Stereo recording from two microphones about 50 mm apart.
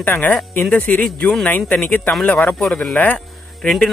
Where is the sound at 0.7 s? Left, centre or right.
Left.